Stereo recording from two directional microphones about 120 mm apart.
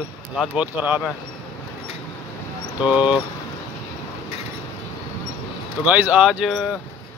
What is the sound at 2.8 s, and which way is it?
Speech, 10° right (ahead or behind).